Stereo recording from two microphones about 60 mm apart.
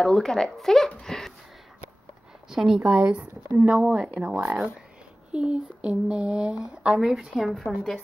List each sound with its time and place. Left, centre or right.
0.0 s speech: centre
2.5 s speech: centre
3.4 s speech: right
3.7 s speech: centre
7.2 s a woman's voice: centre